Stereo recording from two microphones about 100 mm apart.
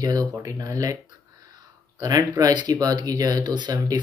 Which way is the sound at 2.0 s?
40° right (ahead or behind).